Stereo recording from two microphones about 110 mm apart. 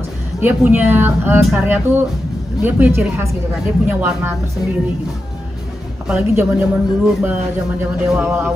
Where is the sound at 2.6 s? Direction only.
15° right (ahead or behind).